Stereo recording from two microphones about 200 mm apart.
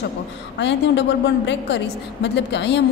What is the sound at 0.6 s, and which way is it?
A woman's voice, 65° left (ahead or behind).